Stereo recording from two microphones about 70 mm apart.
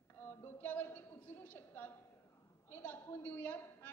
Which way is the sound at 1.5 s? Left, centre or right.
Left.